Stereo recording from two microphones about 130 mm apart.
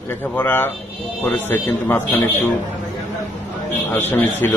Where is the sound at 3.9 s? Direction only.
15° left (ahead or behind).